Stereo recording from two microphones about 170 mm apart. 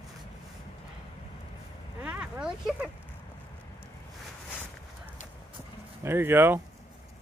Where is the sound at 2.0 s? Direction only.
5° right (ahead or behind).